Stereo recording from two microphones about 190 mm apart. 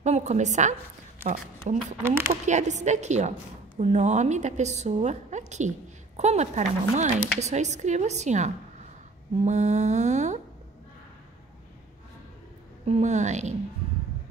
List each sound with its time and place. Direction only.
0.0 s a woman's voice: 35° right (ahead or behind)
2.0 s speech: 10° right (ahead or behind)
2.4 s a woman's voice: 40° right (ahead or behind)
12.8 s a woman's voice: 35° right (ahead or behind)